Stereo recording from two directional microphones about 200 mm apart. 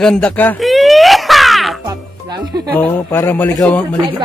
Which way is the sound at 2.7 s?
10° left (ahead or behind).